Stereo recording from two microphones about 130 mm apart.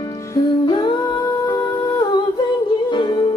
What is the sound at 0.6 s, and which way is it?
Humming, 35° left (ahead or behind).